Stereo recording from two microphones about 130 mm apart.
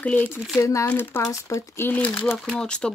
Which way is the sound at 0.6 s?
25° left (ahead or behind).